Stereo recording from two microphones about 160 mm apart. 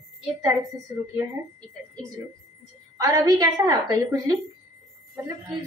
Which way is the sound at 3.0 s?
20° right (ahead or behind).